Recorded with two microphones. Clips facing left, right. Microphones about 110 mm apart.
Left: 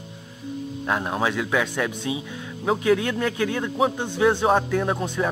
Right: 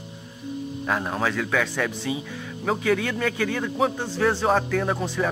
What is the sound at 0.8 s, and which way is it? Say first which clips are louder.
Speech: left 1 dB; 5° left (ahead or behind).